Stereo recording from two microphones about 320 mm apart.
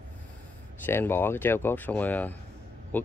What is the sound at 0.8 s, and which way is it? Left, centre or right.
Speech, centre.